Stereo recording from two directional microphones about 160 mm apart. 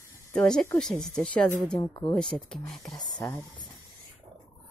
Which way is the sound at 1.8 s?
30° left (ahead or behind).